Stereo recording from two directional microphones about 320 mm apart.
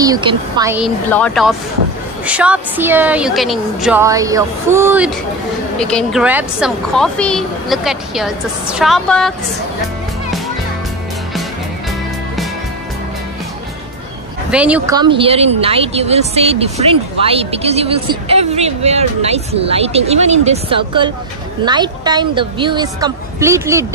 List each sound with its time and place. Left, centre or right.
0.0 s speech: centre
14.5 s a woman's voice: centre